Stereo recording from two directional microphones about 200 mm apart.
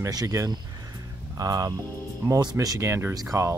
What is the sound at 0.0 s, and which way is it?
Speech, 15° right (ahead or behind).